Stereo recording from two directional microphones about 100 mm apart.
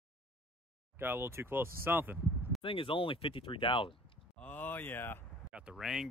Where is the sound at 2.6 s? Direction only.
60° left (ahead or behind).